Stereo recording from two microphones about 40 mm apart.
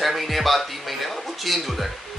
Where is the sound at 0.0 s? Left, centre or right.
Centre.